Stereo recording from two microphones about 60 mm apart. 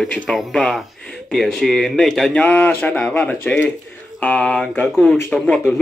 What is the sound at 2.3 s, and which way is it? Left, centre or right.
Speech, left.